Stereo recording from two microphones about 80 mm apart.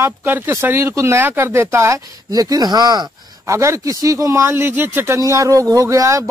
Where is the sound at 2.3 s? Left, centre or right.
Right.